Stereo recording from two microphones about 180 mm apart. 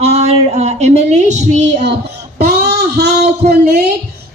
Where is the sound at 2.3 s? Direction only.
60° right (ahead or behind).